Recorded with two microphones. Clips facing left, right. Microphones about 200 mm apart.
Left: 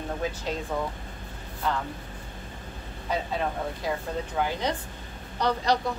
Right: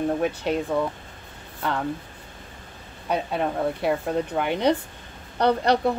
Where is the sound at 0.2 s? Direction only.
65° right (ahead or behind).